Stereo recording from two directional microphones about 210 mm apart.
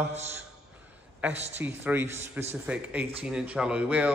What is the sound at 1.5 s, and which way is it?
A man's voice, 10° right (ahead or behind).